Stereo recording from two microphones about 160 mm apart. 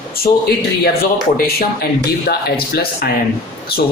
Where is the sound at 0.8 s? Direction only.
75° left (ahead or behind).